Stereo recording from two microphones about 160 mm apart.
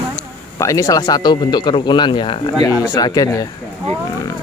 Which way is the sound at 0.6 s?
20° left (ahead or behind).